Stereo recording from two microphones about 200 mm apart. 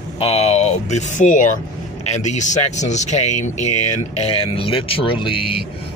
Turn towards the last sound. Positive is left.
turn(degrees=25)  # may be behind; listen again after turning